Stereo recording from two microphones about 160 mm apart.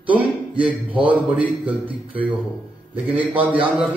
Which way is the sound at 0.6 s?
10° right (ahead or behind).